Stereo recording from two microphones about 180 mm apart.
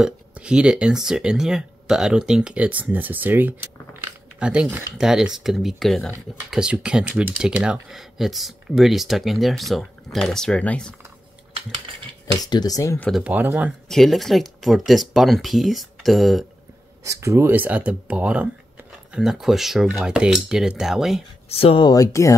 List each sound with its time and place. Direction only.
0.0 s speech: 5° right (ahead or behind)
4.0 s a sound: 5° right (ahead or behind)
4.9 s speech: 5° right (ahead or behind)
12.4 s speech: 20° left (ahead or behind)
13.1 s speech: 10° right (ahead or behind)
17.0 s speech: 15° right (ahead or behind)
21.5 s speech: 30° left (ahead or behind); by 22.3 s 15° left (ahead or behind)